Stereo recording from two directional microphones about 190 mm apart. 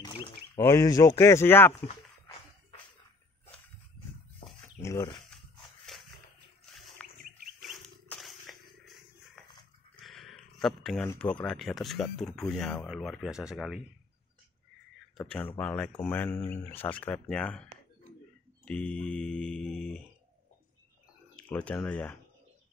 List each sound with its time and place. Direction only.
0.0 s a sound: 25° left (ahead or behind)
0.6 s speech: 15° left (ahead or behind)
4.4 s bird: 25° left (ahead or behind)
4.8 s speech: 15° left (ahead or behind)
7.0 s wild animals: 10° left (ahead or behind)
7.6 s a sound: centre (ahead or behind)
10.0 s a sound: centre (ahead or behind)
11.1 s speech: 5° left (ahead or behind)
15.1 s speech: 5° left (ahead or behind)
18.7 s speech: 5° left (ahead or behind)
21.4 s speech: 5° left (ahead or behind)